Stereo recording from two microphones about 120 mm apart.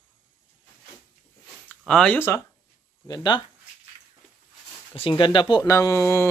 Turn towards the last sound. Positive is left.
turn(degrees=20)  # may be behind; listen again after turning